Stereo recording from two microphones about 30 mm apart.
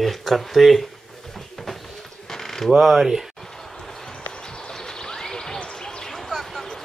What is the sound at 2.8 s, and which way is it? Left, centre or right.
Speech, centre.